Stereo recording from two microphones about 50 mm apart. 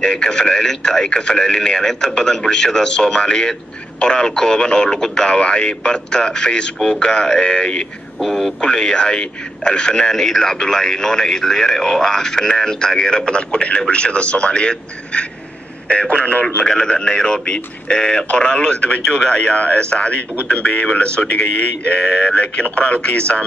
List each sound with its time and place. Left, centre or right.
0.0 s a man's voice: centre
8.2 s speech: centre
8.5 s a man's voice: centre
16.6 s a man's voice: centre